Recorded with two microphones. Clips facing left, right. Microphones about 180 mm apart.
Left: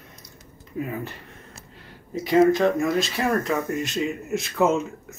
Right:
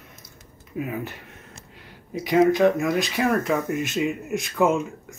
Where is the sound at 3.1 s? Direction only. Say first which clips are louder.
Right 1 dB; centre (ahead or behind).